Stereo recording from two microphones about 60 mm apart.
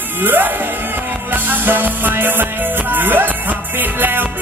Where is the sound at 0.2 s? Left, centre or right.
Right.